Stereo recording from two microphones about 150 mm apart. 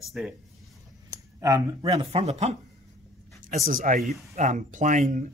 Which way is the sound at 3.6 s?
65° right (ahead or behind).